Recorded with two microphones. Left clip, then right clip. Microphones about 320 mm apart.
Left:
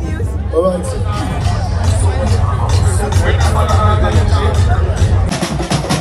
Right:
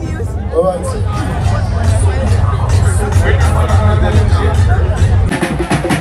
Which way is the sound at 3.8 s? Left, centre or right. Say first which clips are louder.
Left 2 dB; centre.